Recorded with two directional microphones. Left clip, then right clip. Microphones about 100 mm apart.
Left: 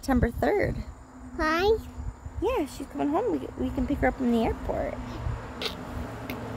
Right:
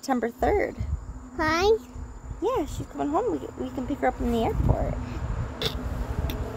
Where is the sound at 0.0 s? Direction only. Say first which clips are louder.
Right 1 dB; 15° left (ahead or behind).